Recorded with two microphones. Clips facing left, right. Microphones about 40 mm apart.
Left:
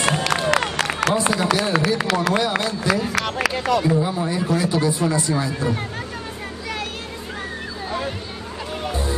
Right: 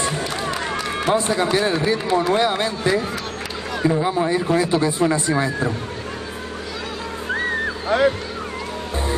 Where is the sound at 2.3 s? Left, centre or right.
Right.